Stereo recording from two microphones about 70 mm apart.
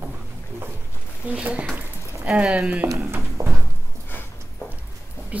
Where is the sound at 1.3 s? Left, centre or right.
Centre.